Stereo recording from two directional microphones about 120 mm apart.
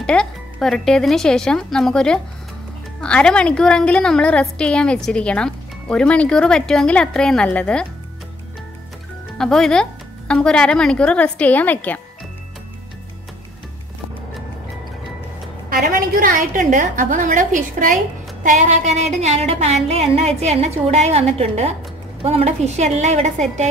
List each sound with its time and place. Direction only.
0.0 s a woman's voice: 10° left (ahead or behind)
9.4 s a woman's voice: 5° left (ahead or behind)
16.3 s a woman's voice: 90° right; by 23.7 s 70° right (ahead or behind)